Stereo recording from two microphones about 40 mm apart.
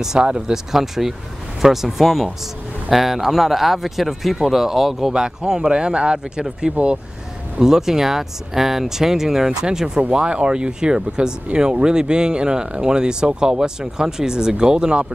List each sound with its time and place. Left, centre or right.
0.2 s speech: centre
5.1 s speech: centre
7.6 s speech: centre